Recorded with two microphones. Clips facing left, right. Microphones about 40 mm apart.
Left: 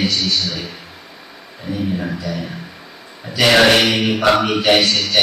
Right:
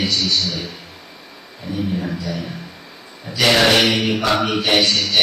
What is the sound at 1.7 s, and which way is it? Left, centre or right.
Speech, left.